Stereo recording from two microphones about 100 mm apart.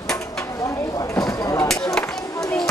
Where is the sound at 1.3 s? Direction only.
35° left (ahead or behind).